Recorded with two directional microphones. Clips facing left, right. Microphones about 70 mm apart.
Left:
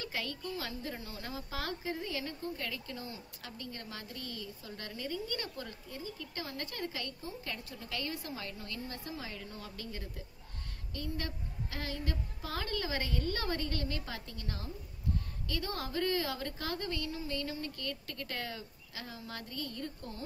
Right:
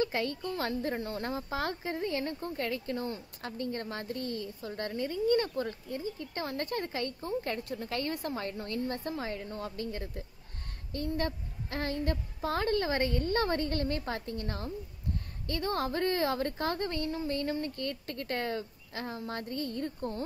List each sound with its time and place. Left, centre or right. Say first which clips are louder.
0.0 s a woman's voice: right 8 dB; right